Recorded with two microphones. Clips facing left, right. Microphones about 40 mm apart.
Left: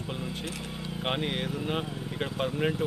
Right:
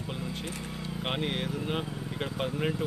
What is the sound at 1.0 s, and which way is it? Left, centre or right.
Speech, centre.